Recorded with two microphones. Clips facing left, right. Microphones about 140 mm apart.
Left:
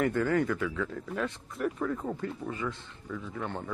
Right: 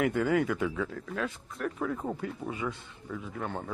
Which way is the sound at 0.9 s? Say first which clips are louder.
Left 1 dB; 5° left (ahead or behind).